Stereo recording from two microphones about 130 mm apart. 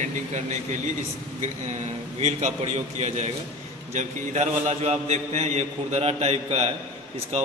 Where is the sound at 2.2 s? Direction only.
55° right (ahead or behind).